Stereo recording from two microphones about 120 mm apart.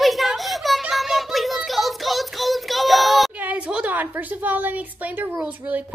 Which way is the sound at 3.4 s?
10° right (ahead or behind).